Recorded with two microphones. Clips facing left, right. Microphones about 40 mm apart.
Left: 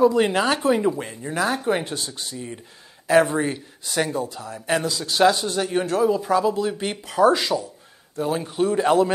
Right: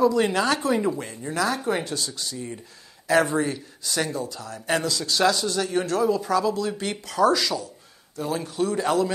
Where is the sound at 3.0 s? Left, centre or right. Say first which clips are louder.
Left 3 dB; left.